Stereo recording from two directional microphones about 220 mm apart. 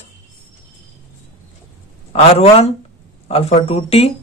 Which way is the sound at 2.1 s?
25° left (ahead or behind).